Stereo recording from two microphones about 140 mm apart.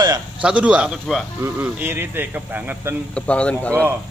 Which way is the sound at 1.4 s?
15° right (ahead or behind).